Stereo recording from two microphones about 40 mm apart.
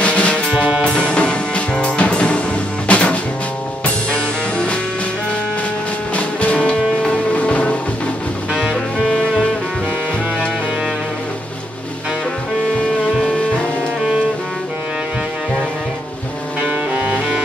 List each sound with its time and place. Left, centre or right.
0.0 s music: left
0.5 s music: right
0.9 s music: left
6.1 s music: left
16.9 s music: right